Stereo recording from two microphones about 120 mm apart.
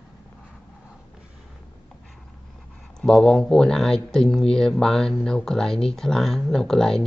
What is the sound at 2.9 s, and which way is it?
Speech, 5° left (ahead or behind).